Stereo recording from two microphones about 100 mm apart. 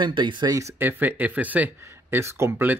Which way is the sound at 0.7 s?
20° right (ahead or behind).